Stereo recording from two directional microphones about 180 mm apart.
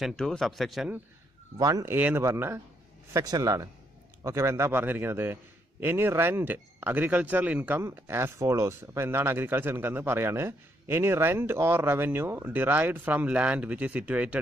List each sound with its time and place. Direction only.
0.0 s speech: 5° left (ahead or behind)
1.6 s a man's voice: 20° right (ahead or behind)